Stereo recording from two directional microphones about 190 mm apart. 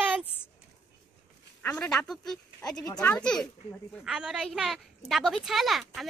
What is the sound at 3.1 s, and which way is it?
A woman's voice, 5° left (ahead or behind).